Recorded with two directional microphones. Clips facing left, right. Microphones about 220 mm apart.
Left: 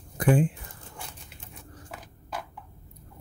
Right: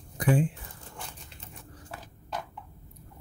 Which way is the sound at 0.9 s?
10° left (ahead or behind).